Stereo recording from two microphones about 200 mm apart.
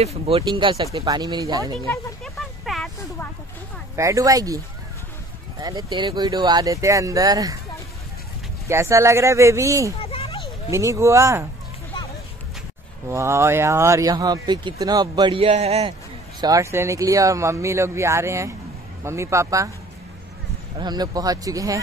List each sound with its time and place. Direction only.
0.0 s speech: 30° right (ahead or behind)
2.2 s a sound: centre (ahead or behind)
3.9 s speech: 15° right (ahead or behind)
5.6 s speech: 20° right (ahead or behind)
8.6 s speech: 15° right (ahead or behind)
9.9 s a sound: 30° left (ahead or behind)
10.7 s speech: 15° right (ahead or behind)
13.1 s speech: 15° right (ahead or behind); by 15.9 s 30° right (ahead or behind)
16.3 s speech: 15° right (ahead or behind)
20.7 s speech: 20° right (ahead or behind)